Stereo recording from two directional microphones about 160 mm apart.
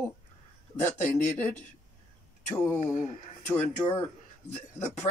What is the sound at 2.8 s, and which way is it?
Speech, 50° left (ahead or behind).